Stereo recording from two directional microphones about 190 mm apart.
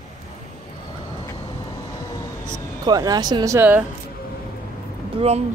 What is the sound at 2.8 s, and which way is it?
Speech, 20° right (ahead or behind).